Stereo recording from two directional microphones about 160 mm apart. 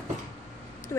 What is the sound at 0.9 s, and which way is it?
Speech, 15° left (ahead or behind).